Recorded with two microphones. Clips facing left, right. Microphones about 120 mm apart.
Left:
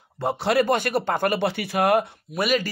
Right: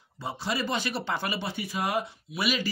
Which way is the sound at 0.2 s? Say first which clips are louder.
Left 10 dB; 65° left (ahead or behind).